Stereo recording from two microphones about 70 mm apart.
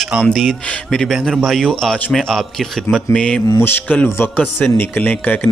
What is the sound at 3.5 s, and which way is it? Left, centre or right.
Speech, left.